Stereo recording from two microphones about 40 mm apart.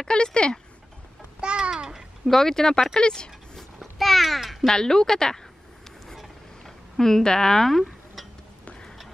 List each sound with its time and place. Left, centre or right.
0.0 s speech: left
1.4 s babbling: right
2.2 s speech: centre
3.5 s a sound: centre
4.6 s speech: centre
6.6 s speech: centre